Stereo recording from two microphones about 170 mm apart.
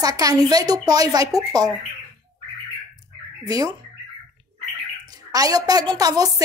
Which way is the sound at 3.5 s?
20° right (ahead or behind).